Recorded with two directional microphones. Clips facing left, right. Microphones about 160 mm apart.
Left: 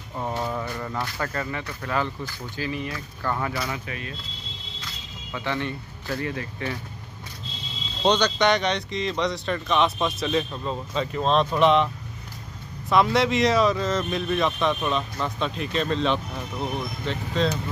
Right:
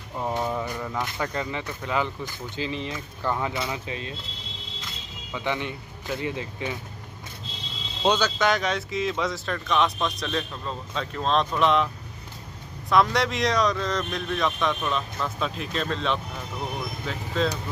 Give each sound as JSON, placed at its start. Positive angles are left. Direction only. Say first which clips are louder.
{"t": 0.2, "sound": "speech", "louder": "right 1 dB", "side_deg": -10}
{"t": 5.3, "sound": "speech", "louder": "even", "side_deg": -15}
{"t": 8.0, "sound": "speech", "louder": "left 2 dB", "side_deg": -5}
{"t": 12.9, "sound": "speech", "louder": "left 2 dB", "side_deg": 0}